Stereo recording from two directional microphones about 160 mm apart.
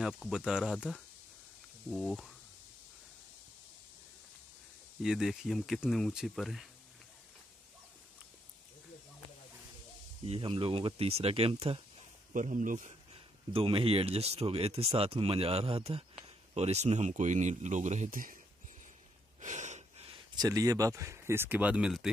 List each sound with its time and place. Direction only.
0.0 s speech: 5° right (ahead or behind)
5.0 s speech: 5° right (ahead or behind)
10.2 s speech: 35° right (ahead or behind)
12.4 s speech: 55° right (ahead or behind)
19.4 s wheeze: 50° right (ahead or behind)
20.1 s speech: 25° right (ahead or behind); by 22.1 s 5° right (ahead or behind)